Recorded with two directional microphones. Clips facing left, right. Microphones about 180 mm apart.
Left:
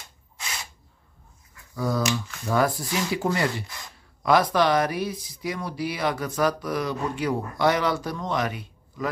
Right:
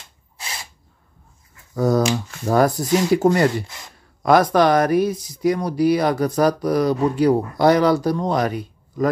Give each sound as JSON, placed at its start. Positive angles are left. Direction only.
{"t": 1.8, "sound": "speech", "side_deg": -45}